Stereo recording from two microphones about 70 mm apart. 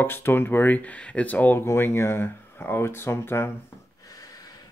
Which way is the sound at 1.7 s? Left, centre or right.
Left.